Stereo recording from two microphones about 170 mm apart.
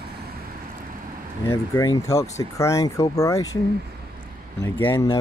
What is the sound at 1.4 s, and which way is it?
Speech, 20° left (ahead or behind).